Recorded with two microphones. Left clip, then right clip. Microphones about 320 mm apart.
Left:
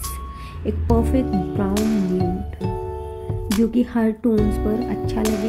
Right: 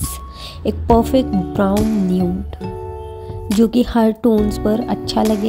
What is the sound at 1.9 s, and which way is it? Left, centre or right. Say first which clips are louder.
Music: right 2 dB; centre.